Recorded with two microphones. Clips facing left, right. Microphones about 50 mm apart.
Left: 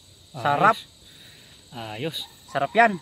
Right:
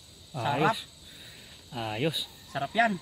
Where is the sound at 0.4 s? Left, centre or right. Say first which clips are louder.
Left 7 dB; left.